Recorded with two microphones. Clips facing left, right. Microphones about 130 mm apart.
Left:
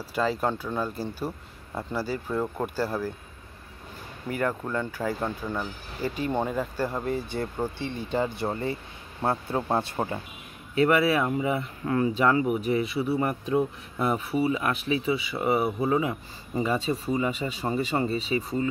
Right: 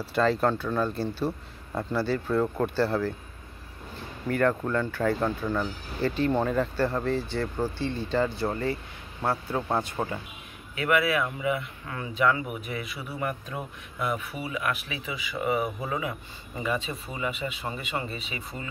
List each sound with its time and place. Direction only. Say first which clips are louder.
0.1 s speech: right 3 dB; 10° left (ahead or behind)
4.3 s speech: right 3 dB; 10° left (ahead or behind); by 18.7 s 35° left (ahead or behind)